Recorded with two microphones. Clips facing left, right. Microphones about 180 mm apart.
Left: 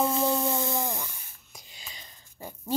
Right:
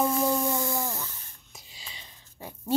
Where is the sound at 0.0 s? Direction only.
25° left (ahead or behind).